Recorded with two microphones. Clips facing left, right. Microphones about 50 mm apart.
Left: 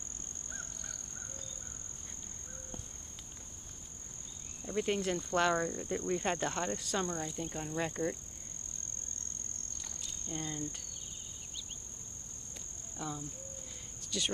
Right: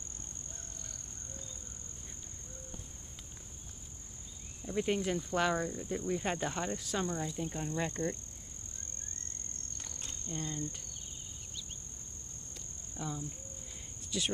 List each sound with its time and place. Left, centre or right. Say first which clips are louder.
4.6 s speech: even; centre
10.2 s speech: even; centre
12.9 s cricket: even; centre
14.1 s speech: even; centre